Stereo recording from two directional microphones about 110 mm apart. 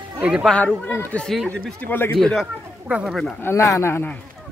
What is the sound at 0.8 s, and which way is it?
Speech, 20° left (ahead or behind).